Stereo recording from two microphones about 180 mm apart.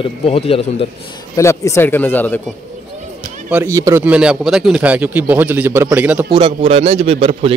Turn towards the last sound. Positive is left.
turn(degrees=-30)  # may be behind; listen again after turning